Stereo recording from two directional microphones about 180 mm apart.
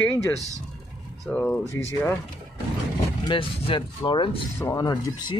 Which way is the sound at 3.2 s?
25° left (ahead or behind).